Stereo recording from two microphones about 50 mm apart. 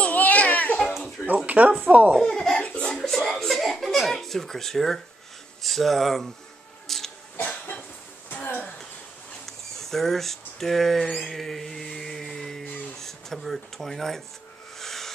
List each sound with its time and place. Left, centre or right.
0.0 s baby cry: left
1.2 s speech: right
2.2 s speech: centre
2.6 s chuckle: left
3.0 s a sound: centre
5.6 s speech: centre
6.9 s a sound: centre
9.5 s speech: centre
14.8 s a sound: centre